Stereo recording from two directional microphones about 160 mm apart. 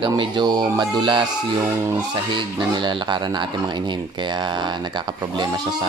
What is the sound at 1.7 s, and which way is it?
Speech, 20° right (ahead or behind).